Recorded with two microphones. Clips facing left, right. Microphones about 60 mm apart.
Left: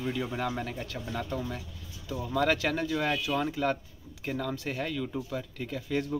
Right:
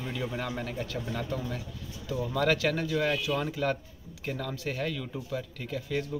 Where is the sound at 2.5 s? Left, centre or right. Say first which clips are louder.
Right 1 dB; centre.